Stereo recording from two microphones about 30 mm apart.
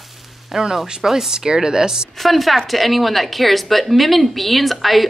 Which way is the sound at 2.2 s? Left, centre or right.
Centre.